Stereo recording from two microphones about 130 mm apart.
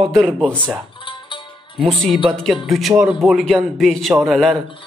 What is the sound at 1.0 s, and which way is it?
Music, 40° left (ahead or behind).